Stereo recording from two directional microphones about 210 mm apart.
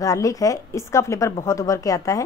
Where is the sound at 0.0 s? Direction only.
15° left (ahead or behind).